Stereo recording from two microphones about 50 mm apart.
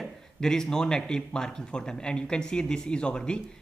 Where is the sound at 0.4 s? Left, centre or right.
Centre.